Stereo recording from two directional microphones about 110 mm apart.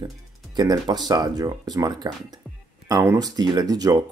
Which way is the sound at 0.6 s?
40° right (ahead or behind).